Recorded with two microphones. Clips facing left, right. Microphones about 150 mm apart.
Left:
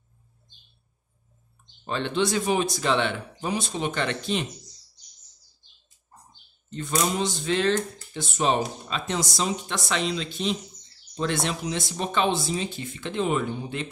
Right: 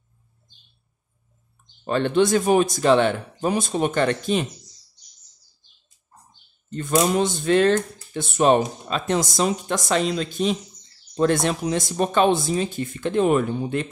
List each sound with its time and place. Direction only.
1.9 s speech: 50° right (ahead or behind)
6.7 s speech: 50° right (ahead or behind)